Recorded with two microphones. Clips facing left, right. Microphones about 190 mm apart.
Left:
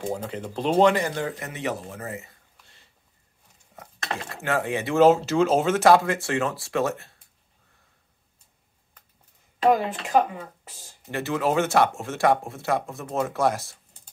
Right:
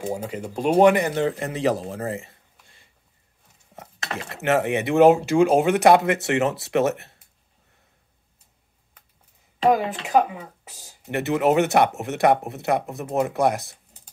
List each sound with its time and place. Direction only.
0.0 s a man's voice: 10° right (ahead or behind); by 2.3 s 30° right (ahead or behind)
4.4 s speech: 20° right (ahead or behind)
9.7 s a man's voice: 5° right (ahead or behind)
11.1 s speech: 20° right (ahead or behind)